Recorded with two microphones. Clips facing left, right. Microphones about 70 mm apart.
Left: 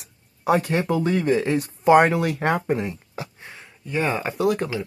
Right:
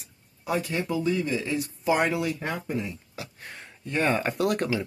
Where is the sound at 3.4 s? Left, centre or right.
Centre.